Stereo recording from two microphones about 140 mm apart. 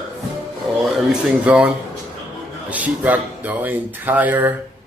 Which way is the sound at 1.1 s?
10° right (ahead or behind).